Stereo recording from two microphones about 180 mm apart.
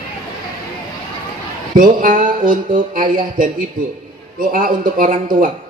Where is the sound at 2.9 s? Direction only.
50° right (ahead or behind).